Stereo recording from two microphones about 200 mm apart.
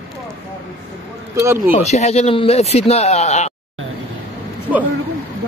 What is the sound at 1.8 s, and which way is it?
Speech, 35° left (ahead or behind).